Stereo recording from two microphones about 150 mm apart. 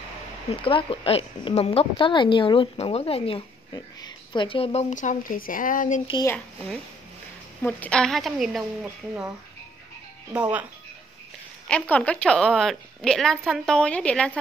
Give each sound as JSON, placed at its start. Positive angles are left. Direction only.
{"t": 0.5, "sound": "speech", "side_deg": 35}
{"t": 3.7, "sound": "speech", "side_deg": 30}
{"t": 4.8, "sound": "speech", "side_deg": 55}
{"t": 6.2, "sound": "a woman's voice", "side_deg": 10}
{"t": 8.8, "sound": "speech", "side_deg": -10}
{"t": 10.3, "sound": "speech", "side_deg": -10}
{"t": 11.6, "sound": "a woman's voice", "side_deg": 10}